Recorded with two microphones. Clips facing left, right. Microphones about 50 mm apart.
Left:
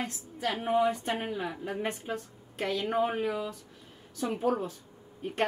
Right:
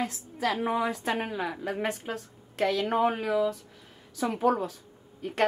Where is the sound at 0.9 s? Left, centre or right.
Right.